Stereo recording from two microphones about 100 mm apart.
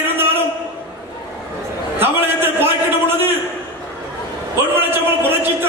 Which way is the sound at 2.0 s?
20° right (ahead or behind).